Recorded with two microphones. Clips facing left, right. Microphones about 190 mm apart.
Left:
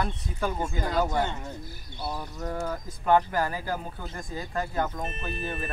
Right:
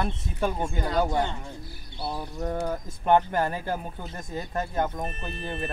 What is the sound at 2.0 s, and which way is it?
Speech, 20° right (ahead or behind).